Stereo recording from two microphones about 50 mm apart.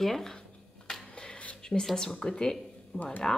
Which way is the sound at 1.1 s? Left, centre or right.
Left.